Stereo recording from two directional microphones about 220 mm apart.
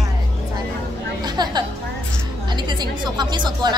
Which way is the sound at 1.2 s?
20° right (ahead or behind).